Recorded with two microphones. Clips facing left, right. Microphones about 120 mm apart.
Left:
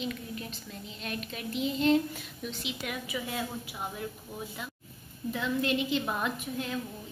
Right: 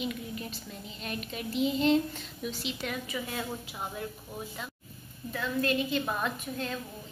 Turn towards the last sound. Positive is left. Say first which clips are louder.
# even
turn(degrees=15)  # may be behind; listen again after turning